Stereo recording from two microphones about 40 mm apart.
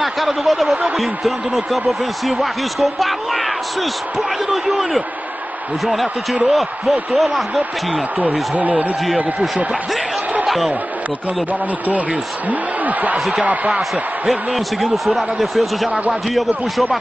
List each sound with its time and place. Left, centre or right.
0.0 s speech: centre
6.4 s speech: centre
8.2 s speech: right
10.4 s a sound: centre
11.9 s speech: right
14.2 s speech: centre